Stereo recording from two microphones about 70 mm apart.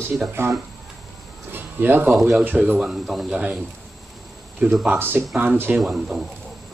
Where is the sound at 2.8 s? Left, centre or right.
Centre.